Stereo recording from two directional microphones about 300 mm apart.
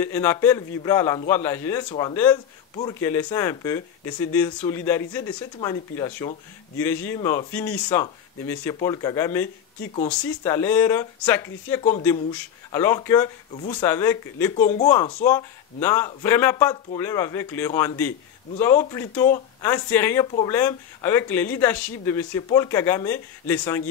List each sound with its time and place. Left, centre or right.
0.0 s speech: centre
14.5 s speech: left